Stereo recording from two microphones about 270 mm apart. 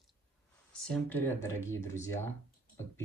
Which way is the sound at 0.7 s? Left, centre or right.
Centre.